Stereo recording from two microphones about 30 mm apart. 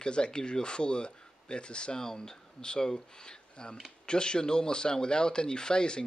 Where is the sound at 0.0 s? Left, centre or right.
Left.